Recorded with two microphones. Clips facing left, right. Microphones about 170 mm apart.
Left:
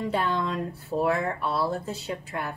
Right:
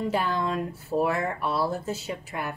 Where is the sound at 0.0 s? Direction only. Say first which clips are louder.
Even; centre (ahead or behind).